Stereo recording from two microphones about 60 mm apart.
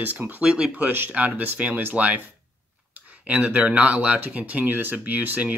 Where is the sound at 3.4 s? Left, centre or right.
Right.